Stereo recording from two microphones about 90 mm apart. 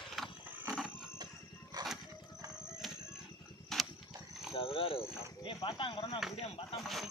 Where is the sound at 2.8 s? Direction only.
Centre (ahead or behind).